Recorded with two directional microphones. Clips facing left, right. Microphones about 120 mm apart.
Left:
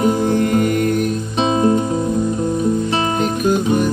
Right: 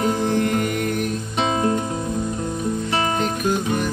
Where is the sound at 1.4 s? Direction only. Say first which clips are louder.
Left 5 dB; 20° left (ahead or behind).